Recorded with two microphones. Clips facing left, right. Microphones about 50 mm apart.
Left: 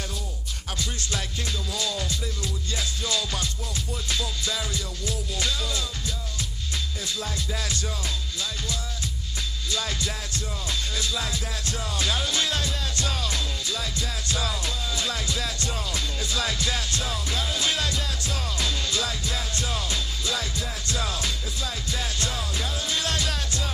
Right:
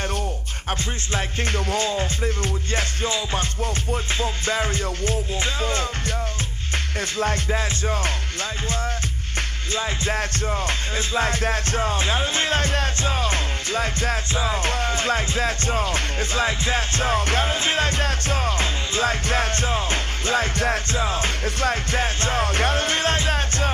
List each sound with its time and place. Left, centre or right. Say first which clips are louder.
1.1 s music: right 9 dB; right
7.2 s music: right 10 dB; right
10.7 s music: right 5 dB; right
14.3 s music: right 1 dB; right
14.6 s music: right 7 dB; right
20.9 s music: right 6 dB; right
21.5 s music: right 9 dB; right